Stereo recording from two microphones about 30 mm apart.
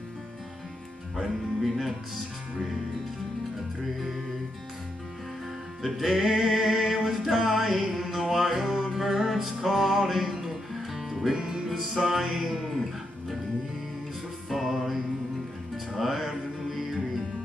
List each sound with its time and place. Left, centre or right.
1.1 s speech: centre
5.8 s music: centre
11.3 s music: centre
11.7 s music: centre
14.5 s music: centre